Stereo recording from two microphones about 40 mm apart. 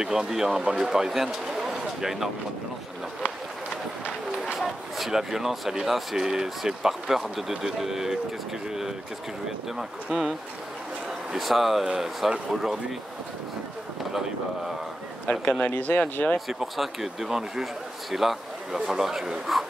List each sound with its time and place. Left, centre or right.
0.0 s speech: centre
4.6 s speech: centre
9.8 s speech: centre
11.3 s speech: centre
15.3 s a man's voice: left
16.3 s a man's voice: centre